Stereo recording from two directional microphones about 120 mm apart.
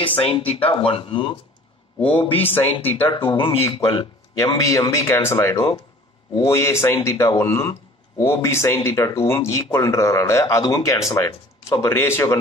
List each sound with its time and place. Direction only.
0.0 s a man's voice: 50° left (ahead or behind)
2.5 s speech: 15° left (ahead or behind)
3.1 s speech: 45° left (ahead or behind)
4.6 s speech: 30° left (ahead or behind)